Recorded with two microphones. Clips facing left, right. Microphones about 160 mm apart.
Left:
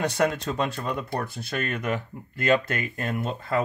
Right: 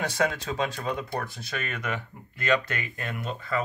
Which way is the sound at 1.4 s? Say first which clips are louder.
Left 4 dB; 50° left (ahead or behind).